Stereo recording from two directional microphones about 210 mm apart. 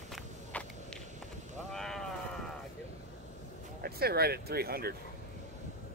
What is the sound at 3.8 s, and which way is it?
Speech, 50° right (ahead or behind).